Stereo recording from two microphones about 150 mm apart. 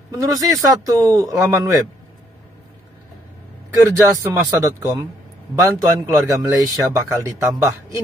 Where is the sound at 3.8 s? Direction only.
15° right (ahead or behind).